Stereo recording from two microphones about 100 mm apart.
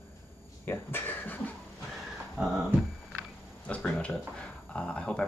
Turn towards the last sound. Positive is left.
turn(degrees=10)  # may be behind; listen again after turning